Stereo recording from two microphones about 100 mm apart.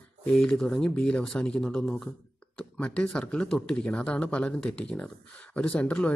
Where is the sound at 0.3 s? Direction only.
5° left (ahead or behind).